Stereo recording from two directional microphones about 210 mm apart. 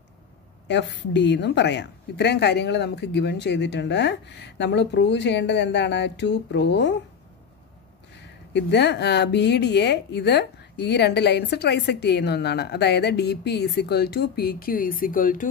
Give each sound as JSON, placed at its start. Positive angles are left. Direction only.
{"t": 0.7, "sound": "a woman's voice", "side_deg": 55}
{"t": 8.2, "sound": "speech", "side_deg": 55}